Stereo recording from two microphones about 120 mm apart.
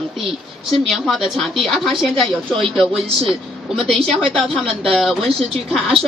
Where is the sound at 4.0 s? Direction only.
50° right (ahead or behind).